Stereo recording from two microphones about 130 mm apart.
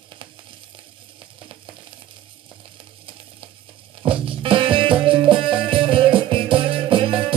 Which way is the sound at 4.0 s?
45° right (ahead or behind).